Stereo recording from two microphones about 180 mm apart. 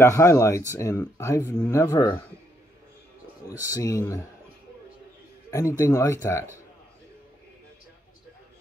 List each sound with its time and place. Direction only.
0.0 s speech: 15° left (ahead or behind)
3.4 s speech: 20° left (ahead or behind)
5.5 s speech: 15° left (ahead or behind)